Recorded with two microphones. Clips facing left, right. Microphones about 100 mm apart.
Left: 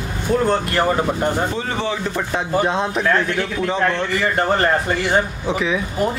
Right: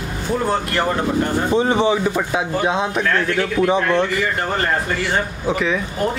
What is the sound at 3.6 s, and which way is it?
Speech, 15° right (ahead or behind).